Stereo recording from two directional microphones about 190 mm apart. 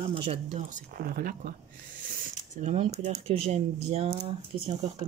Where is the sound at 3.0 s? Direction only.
35° right (ahead or behind).